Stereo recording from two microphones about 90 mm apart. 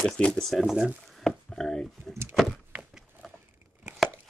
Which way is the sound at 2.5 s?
10° right (ahead or behind).